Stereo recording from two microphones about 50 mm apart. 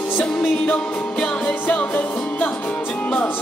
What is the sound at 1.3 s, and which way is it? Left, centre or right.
Music, left.